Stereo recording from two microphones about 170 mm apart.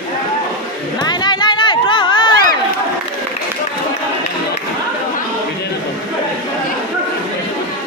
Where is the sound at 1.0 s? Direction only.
25° left (ahead or behind).